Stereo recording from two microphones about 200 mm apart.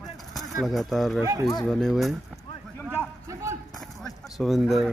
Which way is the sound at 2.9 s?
15° right (ahead or behind).